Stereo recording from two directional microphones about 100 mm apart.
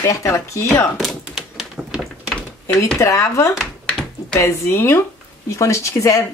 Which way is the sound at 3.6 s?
5° left (ahead or behind).